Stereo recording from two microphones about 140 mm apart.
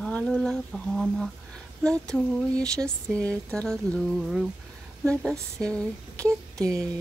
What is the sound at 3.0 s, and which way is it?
Speech, 20° right (ahead or behind).